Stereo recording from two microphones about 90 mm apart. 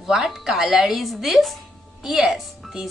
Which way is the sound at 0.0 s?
5° right (ahead or behind).